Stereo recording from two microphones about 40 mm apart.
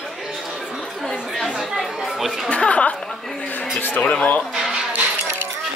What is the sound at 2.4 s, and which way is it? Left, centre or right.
Speech, left.